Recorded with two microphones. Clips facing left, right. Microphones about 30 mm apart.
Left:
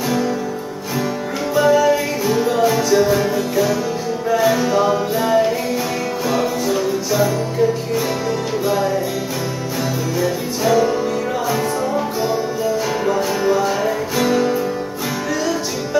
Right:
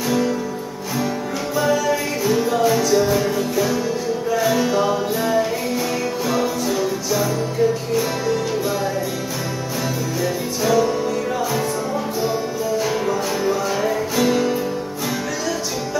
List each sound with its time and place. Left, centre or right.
1.5 s music: centre
10.2 s music: centre
12.2 s music: centre